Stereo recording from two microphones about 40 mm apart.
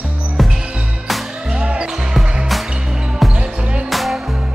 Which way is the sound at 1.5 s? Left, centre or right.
Right.